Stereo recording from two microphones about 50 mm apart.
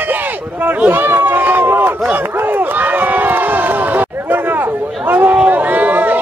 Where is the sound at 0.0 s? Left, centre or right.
Right.